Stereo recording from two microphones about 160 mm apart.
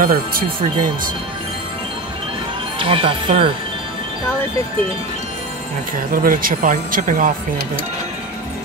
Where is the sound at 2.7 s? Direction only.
35° right (ahead or behind).